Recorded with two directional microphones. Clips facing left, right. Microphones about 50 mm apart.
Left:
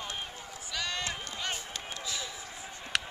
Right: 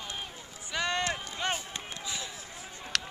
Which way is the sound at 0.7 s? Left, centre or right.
Right.